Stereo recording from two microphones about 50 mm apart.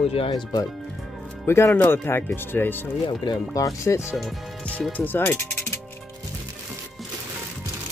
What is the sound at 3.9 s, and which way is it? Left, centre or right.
Speech, left.